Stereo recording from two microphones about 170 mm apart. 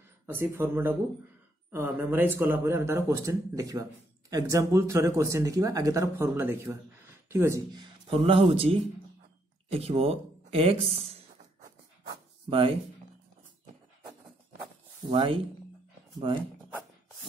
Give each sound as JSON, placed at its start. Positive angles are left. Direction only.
{"t": 0.3, "sound": "speech", "side_deg": -15}
{"t": 12.4, "sound": "speech", "side_deg": -35}
{"t": 15.0, "sound": "speech", "side_deg": -30}